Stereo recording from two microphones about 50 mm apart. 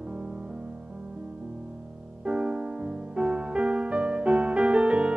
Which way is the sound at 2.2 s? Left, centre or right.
Centre.